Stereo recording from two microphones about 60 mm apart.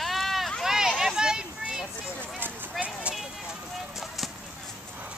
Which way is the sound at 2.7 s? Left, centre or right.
Right.